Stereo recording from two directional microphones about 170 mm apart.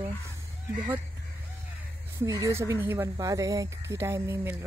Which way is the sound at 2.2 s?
20° right (ahead or behind).